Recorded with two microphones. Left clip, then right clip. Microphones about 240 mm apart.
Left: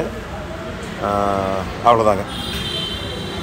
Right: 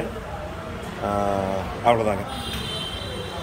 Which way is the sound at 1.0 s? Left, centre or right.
Centre.